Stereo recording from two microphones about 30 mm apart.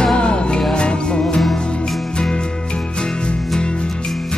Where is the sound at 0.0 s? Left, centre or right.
Left.